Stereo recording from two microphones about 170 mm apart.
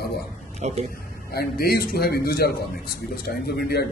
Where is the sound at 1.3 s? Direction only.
65° left (ahead or behind).